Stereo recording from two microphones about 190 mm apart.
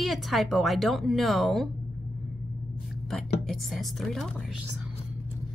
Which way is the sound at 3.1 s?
Centre (ahead or behind).